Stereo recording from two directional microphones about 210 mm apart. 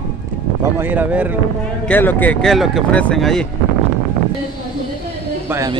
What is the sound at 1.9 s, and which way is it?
Speech, 10° left (ahead or behind).